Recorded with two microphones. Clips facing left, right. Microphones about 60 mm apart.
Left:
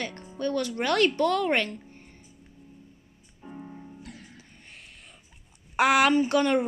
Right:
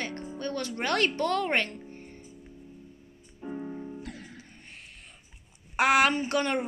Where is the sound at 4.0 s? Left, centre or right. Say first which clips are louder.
Right 4 dB; right.